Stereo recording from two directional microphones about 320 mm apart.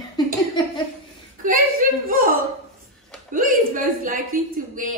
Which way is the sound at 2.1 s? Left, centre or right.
Right.